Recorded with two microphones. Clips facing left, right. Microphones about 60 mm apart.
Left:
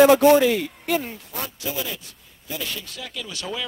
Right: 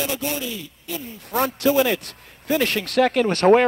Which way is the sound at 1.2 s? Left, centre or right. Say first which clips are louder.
Right 12 dB; right.